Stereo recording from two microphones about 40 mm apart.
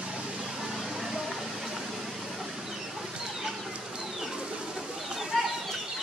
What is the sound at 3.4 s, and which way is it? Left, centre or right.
Chicken, centre.